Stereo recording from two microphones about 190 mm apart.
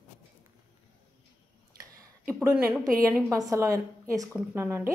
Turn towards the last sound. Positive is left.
turn(degrees=-10)  # may be behind; listen again after turning